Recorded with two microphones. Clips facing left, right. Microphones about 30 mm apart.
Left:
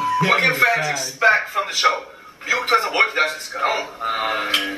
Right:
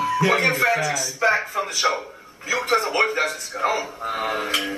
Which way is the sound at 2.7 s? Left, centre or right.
Left.